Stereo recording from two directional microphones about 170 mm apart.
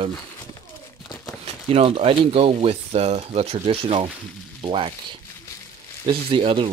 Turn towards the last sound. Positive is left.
turn(degrees=-30)  # may be behind; listen again after turning